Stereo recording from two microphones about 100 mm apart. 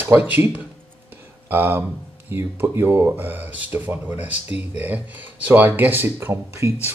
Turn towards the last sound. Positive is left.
turn(degrees=-25)  # may be behind; listen again after turning